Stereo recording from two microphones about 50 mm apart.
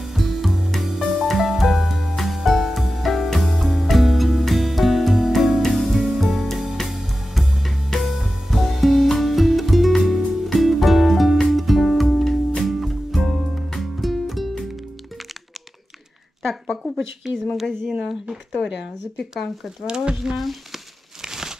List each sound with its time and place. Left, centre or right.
0.0 s music: centre
16.6 s speech: centre
17.2 s speech: centre
19.9 s speech: centre
20.3 s crumpling: centre